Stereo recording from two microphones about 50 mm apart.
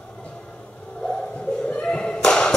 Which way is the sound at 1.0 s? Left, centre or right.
Left.